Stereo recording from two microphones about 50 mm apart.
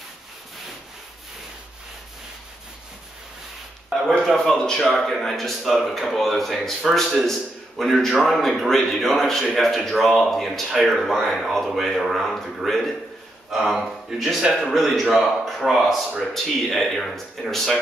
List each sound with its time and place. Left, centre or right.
4.3 s a sound: centre
4.6 s speech: centre
4.8 s a man's voice: centre
13.5 s a man's voice: centre